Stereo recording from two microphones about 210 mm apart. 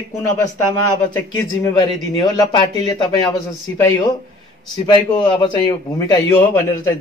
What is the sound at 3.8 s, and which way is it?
A man's voice, 20° left (ahead or behind).